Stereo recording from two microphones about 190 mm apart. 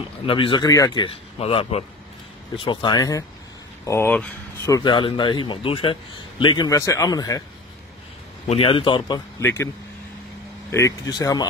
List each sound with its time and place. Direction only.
0.3 s speech: 25° left (ahead or behind); by 4.6 s 10° left (ahead or behind)
4.6 s speech: 20° left (ahead or behind)
8.5 s speech: 30° left (ahead or behind)
9.4 s speech: 15° left (ahead or behind)
10.7 s speech: 20° left (ahead or behind)